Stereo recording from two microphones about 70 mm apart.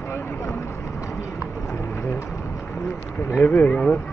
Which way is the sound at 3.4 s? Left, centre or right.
Left.